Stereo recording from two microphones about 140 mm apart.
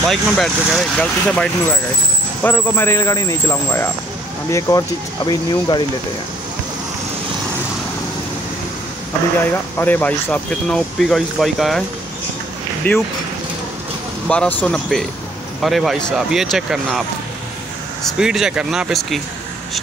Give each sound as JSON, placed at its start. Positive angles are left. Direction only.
{"t": 0.1, "sound": "speech", "side_deg": 0}
{"t": 2.4, "sound": "speech", "side_deg": 15}
{"t": 9.8, "sound": "speech", "side_deg": 10}
{"t": 12.9, "sound": "speech", "side_deg": 15}
{"t": 14.2, "sound": "speech", "side_deg": 10}
{"t": 18.0, "sound": "speech", "side_deg": -5}